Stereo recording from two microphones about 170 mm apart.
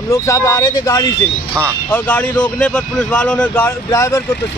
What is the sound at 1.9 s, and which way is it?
A man's voice, 10° left (ahead or behind).